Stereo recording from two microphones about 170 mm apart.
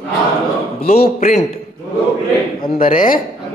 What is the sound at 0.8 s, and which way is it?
Speech, 65° left (ahead or behind).